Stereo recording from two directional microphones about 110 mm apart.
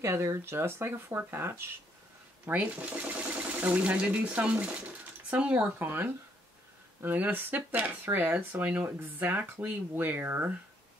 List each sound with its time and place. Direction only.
0.0 s speech: 25° right (ahead or behind)